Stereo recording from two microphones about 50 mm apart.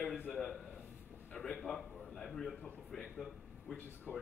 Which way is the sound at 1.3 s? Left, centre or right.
Centre.